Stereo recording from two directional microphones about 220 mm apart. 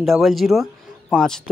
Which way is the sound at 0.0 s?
Centre (ahead or behind).